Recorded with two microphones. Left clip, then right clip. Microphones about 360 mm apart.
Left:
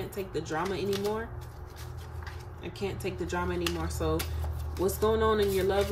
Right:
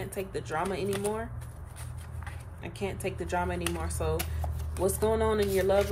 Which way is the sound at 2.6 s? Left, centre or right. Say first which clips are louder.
Even; centre.